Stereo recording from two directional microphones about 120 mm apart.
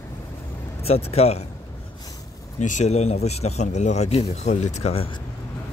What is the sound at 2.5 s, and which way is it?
Speech, 80° left.